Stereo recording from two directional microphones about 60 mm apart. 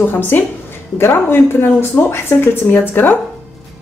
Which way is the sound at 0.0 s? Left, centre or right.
Left.